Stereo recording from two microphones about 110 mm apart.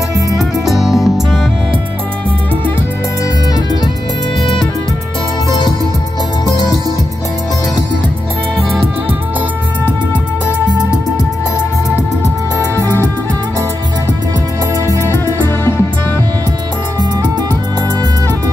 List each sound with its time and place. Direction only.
0.4 s music: centre (ahead or behind)
6.4 s music: 35° left (ahead or behind)